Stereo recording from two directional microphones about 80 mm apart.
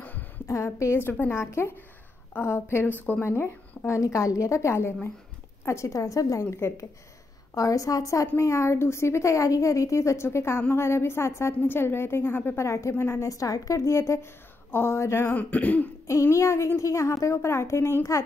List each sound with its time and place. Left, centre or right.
0.7 s a woman's voice: left; by 15.9 s centre
16.1 s a woman's voice: left